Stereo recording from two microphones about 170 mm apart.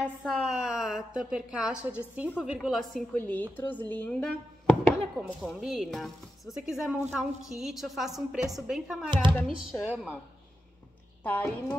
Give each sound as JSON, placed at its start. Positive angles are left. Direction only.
{"t": 0.0, "sound": "a woman's voice", "side_deg": -5}
{"t": 9.1, "sound": "speech", "side_deg": -30}
{"t": 9.6, "sound": "speech", "side_deg": -5}
{"t": 11.2, "sound": "a woman's voice", "side_deg": 10}